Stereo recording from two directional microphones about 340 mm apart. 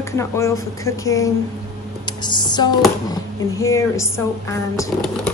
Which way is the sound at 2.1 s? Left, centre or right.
Centre.